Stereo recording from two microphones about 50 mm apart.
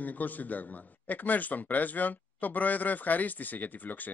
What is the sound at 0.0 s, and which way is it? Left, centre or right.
A man's voice, left.